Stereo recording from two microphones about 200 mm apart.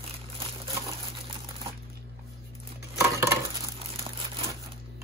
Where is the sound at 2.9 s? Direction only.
15° right (ahead or behind).